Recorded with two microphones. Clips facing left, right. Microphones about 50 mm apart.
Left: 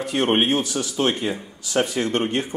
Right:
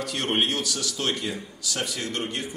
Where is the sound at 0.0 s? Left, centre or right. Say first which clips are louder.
Left 6 dB; left.